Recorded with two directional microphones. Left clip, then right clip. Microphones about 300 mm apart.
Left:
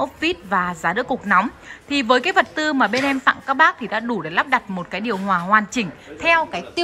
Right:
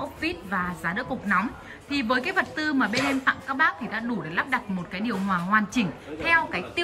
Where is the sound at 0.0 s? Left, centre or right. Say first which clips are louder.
Left 8 dB; centre.